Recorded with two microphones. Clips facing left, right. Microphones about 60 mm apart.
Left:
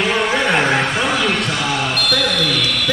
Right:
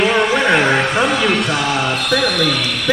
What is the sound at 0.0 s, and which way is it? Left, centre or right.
Music, centre.